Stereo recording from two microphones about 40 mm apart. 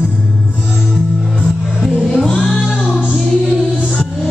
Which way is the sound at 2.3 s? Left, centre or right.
Left.